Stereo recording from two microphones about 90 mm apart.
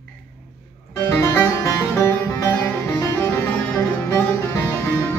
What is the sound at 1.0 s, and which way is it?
Music, 30° left (ahead or behind).